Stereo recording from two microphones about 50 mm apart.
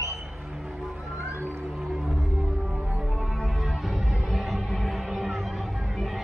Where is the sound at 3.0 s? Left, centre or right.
Centre.